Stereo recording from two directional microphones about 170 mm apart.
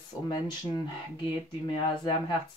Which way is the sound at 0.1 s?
20° left (ahead or behind).